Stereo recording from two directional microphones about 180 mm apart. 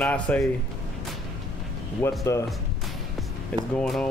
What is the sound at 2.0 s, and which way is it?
Speech, 15° left (ahead or behind).